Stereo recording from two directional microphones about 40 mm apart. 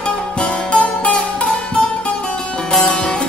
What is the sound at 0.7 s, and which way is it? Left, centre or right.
Music, left.